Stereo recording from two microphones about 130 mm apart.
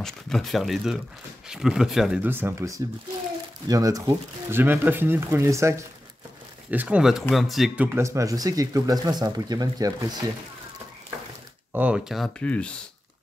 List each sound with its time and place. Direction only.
0.0 s speech: 5° left (ahead or behind)
2.2 s speech: 15° right (ahead or behind)
6.7 s speech: 10° right (ahead or behind)
7.8 s speech: 20° right (ahead or behind)
11.7 s speech: 10° right (ahead or behind)
12.4 s speech: 10° left (ahead or behind)